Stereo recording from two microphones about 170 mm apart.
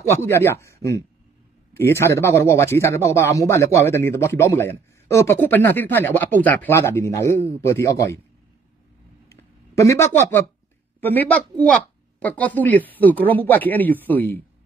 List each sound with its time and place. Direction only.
0.1 s speech: 15° left (ahead or behind)
9.3 s a sound: 20° left (ahead or behind)
11.0 s speech: 10° left (ahead or behind)